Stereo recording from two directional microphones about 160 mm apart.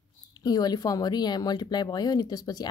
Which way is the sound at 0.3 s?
25° left (ahead or behind).